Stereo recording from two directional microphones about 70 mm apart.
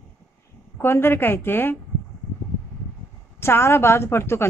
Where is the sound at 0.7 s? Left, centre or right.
Left.